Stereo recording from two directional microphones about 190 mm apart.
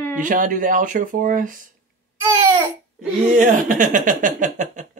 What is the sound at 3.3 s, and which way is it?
Speech, 40° right (ahead or behind).